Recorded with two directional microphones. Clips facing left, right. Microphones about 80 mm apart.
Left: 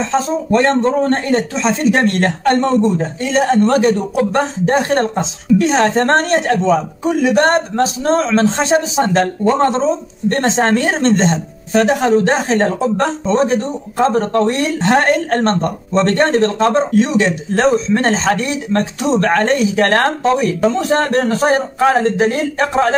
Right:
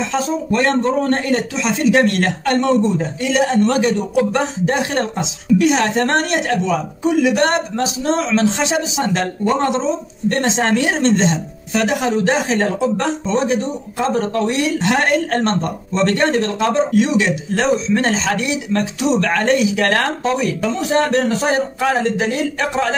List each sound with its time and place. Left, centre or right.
0.1 s speech: left